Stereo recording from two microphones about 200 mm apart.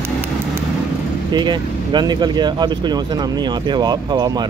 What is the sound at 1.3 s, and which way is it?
Speech, 20° right (ahead or behind).